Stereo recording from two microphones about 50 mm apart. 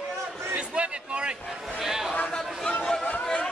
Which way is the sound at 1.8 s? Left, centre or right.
Centre.